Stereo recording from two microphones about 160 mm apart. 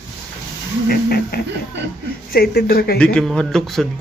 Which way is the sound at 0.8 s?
75° left (ahead or behind).